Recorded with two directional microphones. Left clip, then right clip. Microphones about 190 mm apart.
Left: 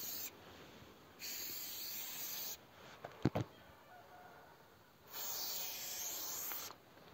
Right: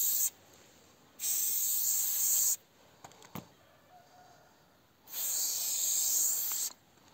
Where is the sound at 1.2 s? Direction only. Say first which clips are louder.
Right 11 dB; 50° right (ahead or behind).